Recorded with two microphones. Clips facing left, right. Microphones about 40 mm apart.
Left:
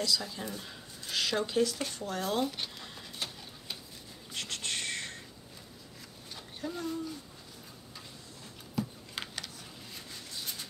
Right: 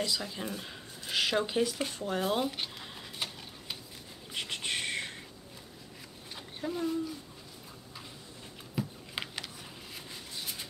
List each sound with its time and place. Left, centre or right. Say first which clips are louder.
0.0 s speech: left 1 dB; right
4.3 s whispering: right 2 dB; centre
6.3 s a sound: right 3 dB; centre
8.7 s computer keyboard: even; centre